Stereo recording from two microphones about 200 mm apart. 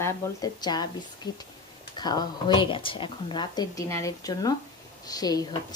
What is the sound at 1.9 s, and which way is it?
Speech, 20° left (ahead or behind).